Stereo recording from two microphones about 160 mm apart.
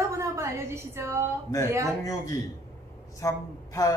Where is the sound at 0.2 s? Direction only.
20° right (ahead or behind).